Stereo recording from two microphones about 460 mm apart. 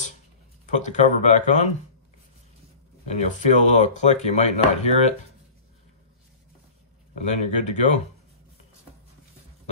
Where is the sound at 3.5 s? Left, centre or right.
Centre.